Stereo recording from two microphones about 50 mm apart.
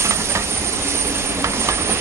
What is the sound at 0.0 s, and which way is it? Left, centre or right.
Train, right.